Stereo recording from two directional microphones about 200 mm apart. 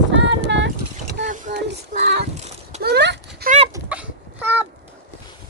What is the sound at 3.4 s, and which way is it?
Dog, 30° right (ahead or behind).